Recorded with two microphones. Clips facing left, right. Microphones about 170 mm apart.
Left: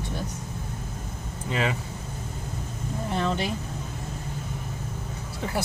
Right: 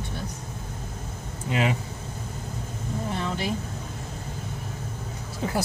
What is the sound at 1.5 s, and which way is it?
Speech, 15° right (ahead or behind).